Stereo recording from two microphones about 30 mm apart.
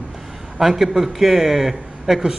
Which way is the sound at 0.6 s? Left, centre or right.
Centre.